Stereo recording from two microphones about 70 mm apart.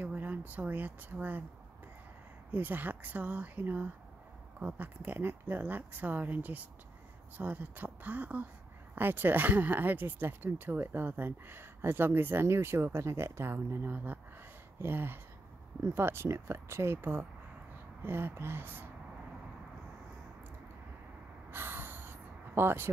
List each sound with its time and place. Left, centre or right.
0.0 s speech: right
2.5 s speech: right
21.5 s gasp: right